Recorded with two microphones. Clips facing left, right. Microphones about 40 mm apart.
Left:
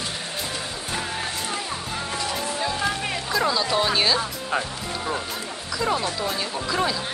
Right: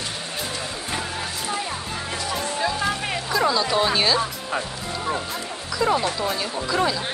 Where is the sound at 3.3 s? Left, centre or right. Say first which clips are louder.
Right 2 dB; centre.